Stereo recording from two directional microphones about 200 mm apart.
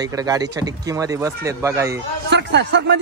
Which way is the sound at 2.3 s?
60° right (ahead or behind).